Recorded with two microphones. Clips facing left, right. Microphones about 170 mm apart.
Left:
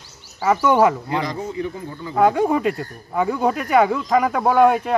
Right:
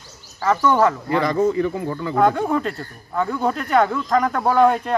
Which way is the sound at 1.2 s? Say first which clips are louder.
Right 7 dB; 55° right (ahead or behind).